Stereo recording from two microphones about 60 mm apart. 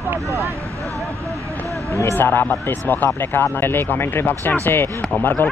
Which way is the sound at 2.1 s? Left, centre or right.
Left.